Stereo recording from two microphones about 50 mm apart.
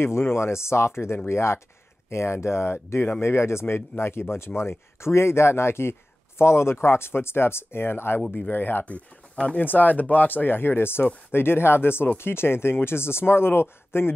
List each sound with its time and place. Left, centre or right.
0.0 s speech: left
1.1 s speech: left
2.0 s speech: left
8.8 s speech: left
9.6 s speech: left